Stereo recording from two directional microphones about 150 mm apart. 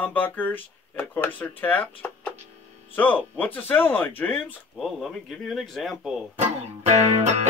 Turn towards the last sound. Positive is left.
turn(degrees=-45)  # may be behind; listen again after turning